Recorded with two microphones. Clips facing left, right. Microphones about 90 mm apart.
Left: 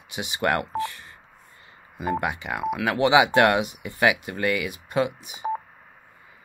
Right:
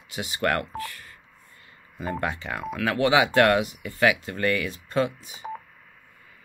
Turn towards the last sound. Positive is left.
turn(degrees=20)  # may be behind; listen again after turning